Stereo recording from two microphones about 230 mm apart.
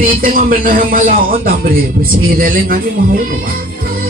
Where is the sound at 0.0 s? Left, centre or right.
Right.